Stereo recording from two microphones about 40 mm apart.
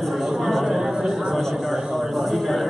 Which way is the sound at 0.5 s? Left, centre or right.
Centre.